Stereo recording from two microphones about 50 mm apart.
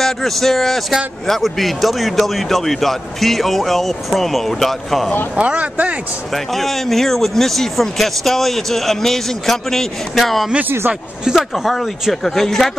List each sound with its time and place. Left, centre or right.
0.0 s speech: centre
5.3 s speech: right
6.3 s speech: centre
11.5 s speech: centre